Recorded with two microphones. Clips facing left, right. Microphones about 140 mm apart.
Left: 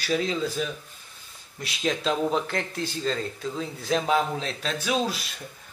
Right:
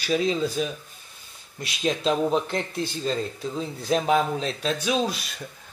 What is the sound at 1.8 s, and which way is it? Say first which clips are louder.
Speech: right 2 dB; 20° right (ahead or behind).